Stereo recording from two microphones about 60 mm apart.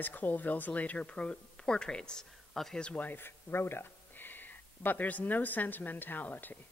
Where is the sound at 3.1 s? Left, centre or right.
Left.